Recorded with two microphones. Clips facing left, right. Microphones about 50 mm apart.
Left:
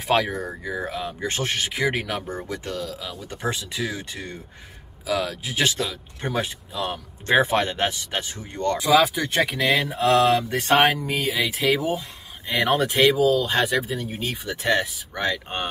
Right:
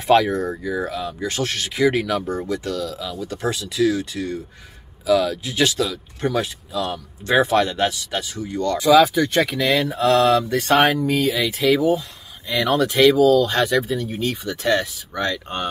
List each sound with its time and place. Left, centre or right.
0.0 s speech: centre; by 4.4 s left
5.0 s speech: centre; by 8.7 s left
8.7 s speech: centre; by 10.8 s left
10.8 s speech: centre
12.4 s speech: left
13.0 s speech: centre